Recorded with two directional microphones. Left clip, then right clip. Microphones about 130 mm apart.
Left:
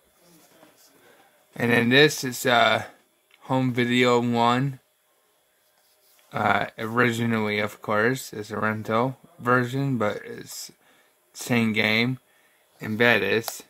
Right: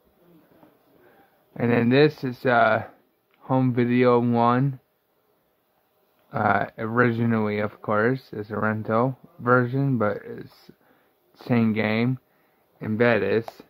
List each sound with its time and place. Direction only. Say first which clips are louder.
1.5 s speech: left 1 dB; 15° left (ahead or behind)
6.2 s speech: right 1 dB; 10° left (ahead or behind)